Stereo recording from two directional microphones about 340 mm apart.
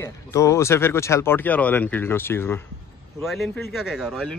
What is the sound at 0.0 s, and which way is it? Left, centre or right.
Speech, centre.